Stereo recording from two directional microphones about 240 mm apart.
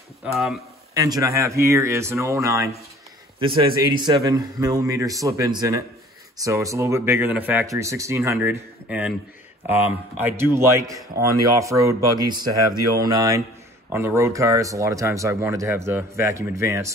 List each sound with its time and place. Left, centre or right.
0.9 s a man's voice: centre